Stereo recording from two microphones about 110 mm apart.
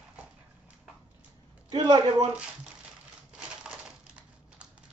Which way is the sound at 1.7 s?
40° right (ahead or behind).